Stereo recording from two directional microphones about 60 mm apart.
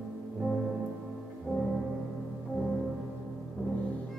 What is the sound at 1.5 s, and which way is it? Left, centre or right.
Music, centre.